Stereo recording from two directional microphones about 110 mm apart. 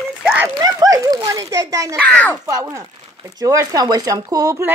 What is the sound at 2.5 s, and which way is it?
Speech, 30° right (ahead or behind).